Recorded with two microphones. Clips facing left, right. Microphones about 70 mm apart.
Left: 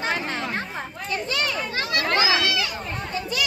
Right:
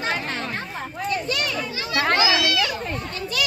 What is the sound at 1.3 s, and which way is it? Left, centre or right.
Children playing, left.